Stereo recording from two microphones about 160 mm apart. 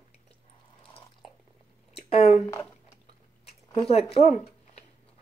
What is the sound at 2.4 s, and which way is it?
Speech, 15° left (ahead or behind).